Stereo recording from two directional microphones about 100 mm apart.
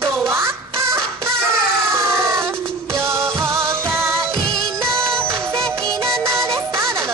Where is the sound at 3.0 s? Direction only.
25° right (ahead or behind).